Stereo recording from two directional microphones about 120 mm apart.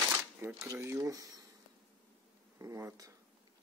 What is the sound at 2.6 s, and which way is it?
Speech, 25° right (ahead or behind).